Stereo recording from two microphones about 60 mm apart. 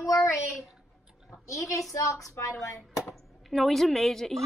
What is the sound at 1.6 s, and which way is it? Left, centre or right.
Speech, left.